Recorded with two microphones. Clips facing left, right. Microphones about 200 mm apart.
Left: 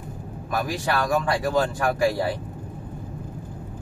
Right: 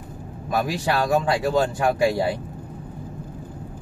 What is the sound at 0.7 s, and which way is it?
Speech, 20° right (ahead or behind).